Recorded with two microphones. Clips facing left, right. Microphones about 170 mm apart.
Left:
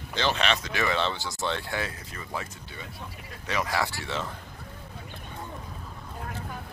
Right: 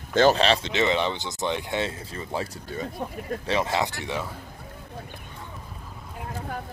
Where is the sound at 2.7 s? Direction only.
40° right (ahead or behind).